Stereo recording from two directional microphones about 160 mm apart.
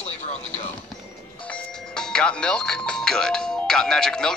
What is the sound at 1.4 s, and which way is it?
Doorbell, 5° left (ahead or behind).